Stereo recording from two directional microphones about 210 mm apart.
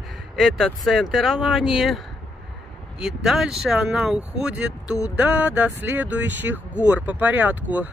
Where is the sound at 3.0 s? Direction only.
Centre (ahead or behind).